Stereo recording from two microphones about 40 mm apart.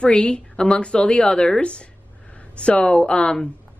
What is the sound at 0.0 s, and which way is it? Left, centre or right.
A woman's voice, left.